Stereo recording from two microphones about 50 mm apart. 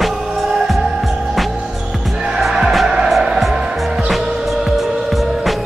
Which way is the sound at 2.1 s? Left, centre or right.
Centre.